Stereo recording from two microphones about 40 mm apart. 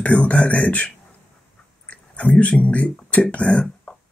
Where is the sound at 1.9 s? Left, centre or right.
Left.